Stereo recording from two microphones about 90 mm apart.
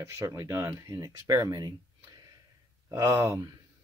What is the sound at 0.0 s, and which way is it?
Speech, 30° right (ahead or behind).